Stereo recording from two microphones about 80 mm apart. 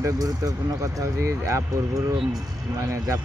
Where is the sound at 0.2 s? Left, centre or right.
Right.